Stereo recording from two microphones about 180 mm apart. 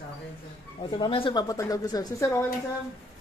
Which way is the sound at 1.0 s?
25° left (ahead or behind).